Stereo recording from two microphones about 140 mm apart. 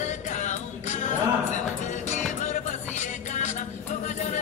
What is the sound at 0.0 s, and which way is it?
Music, 60° left (ahead or behind).